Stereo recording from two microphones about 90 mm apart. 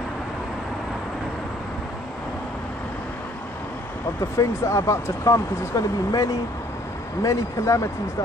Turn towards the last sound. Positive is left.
turn(degrees=35)  # may be behind; listen again after turning